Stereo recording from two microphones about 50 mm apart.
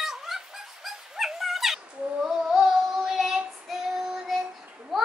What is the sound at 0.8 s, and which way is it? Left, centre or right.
Dog, centre.